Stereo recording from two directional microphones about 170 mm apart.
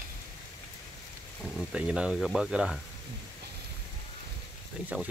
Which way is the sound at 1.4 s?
Centre (ahead or behind).